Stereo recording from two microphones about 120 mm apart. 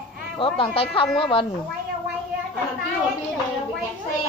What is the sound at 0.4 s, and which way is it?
Speech, 45° left (ahead or behind).